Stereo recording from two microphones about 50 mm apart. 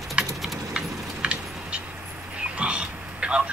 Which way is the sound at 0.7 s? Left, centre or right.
Right.